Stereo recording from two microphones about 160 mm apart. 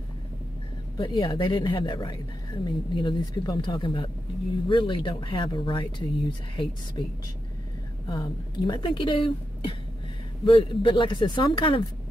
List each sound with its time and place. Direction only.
0.9 s speech: 25° left (ahead or behind)
8.1 s speech: 25° left (ahead or behind)